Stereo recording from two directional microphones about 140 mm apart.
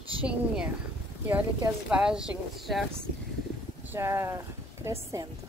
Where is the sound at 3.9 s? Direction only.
20° right (ahead or behind).